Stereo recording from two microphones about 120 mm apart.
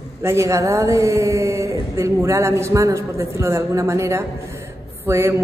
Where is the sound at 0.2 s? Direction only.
25° right (ahead or behind).